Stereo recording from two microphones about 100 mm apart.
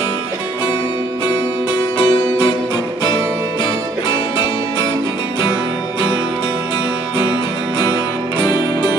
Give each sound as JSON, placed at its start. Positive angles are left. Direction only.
{"t": 2.0, "sound": "music", "side_deg": 60}